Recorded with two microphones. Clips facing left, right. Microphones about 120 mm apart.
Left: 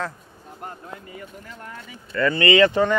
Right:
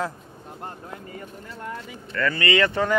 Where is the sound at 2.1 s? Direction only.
25° left (ahead or behind).